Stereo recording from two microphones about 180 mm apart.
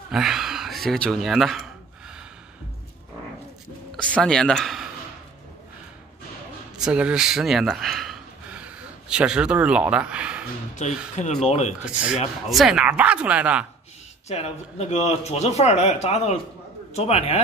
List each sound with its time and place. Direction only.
0.1 s speech: 5° right (ahead or behind)
4.2 s speech: 5° left (ahead or behind)
6.8 s speech: 5° right (ahead or behind)
10.8 s speech: 40° left (ahead or behind)
11.8 s speech: 5° right (ahead or behind)
14.2 s speech: 35° left (ahead or behind)